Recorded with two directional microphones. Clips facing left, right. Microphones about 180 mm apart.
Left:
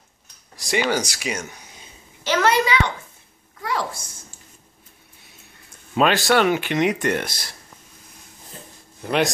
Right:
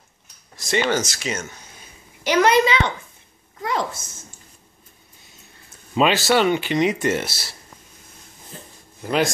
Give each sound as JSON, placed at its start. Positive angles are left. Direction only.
{"t": 0.6, "sound": "speech", "side_deg": 10}
{"t": 2.2, "sound": "a child's voice", "side_deg": -15}
{"t": 3.6, "sound": "a sound", "side_deg": -20}
{"t": 6.0, "sound": "speech", "side_deg": -5}
{"t": 9.0, "sound": "speech", "side_deg": 0}